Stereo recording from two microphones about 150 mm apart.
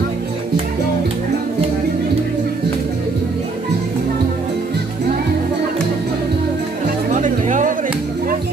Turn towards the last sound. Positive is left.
turn(degrees=-60)  # may be behind; listen again after turning